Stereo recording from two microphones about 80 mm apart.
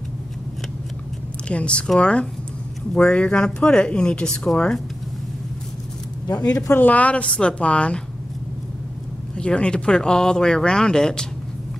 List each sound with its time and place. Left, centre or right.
1.5 s speech: centre
6.7 s speech: left
9.4 s speech: centre